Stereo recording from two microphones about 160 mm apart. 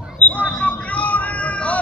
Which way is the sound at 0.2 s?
10° left (ahead or behind).